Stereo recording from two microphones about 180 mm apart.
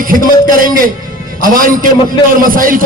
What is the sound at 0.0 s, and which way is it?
A man's voice, 50° right (ahead or behind).